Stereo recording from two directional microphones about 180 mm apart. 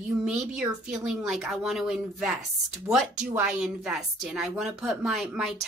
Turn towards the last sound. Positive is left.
turn(degrees=0)  # may be behind; listen again after turning